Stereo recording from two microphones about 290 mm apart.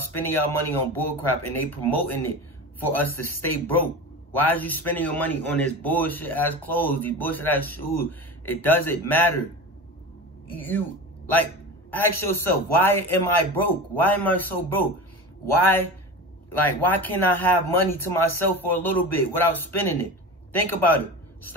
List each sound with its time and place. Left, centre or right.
0.2 s a man's voice: centre
11.9 s a man's voice: centre